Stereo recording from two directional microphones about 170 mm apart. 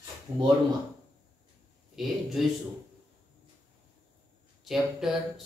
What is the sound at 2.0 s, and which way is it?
Speech, centre (ahead or behind).